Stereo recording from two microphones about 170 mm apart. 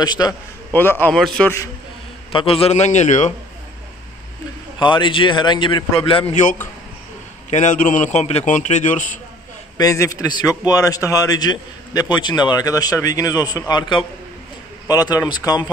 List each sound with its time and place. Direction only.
0.0 s a man's voice: 25° left (ahead or behind)
0.7 s a man's voice: 10° left (ahead or behind)
2.3 s a man's voice: 35° left (ahead or behind)
4.7 s a man's voice: 30° left (ahead or behind)
7.4 s a man's voice: 45° left (ahead or behind)
9.8 s a man's voice: 20° left (ahead or behind)